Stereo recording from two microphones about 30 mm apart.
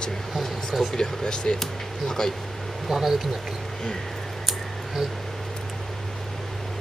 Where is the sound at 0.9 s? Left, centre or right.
Left.